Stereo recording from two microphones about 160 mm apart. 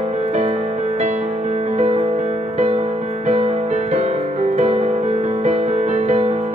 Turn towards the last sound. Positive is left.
turn(degrees=-45)  # may be behind; listen again after turning